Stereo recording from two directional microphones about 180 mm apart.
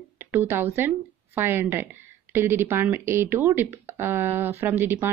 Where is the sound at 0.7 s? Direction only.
10° right (ahead or behind).